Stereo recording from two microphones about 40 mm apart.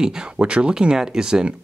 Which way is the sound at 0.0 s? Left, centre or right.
Centre.